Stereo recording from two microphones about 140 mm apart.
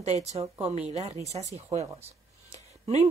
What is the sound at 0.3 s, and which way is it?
Speech, 50° right (ahead or behind).